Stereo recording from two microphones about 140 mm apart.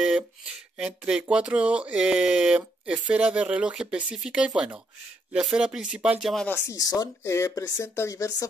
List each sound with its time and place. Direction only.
0.7 s speech: 5° right (ahead or behind)
6.4 s speech: 20° left (ahead or behind)